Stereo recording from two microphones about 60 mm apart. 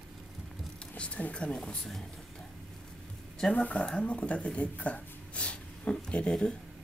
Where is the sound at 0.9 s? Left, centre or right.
Left.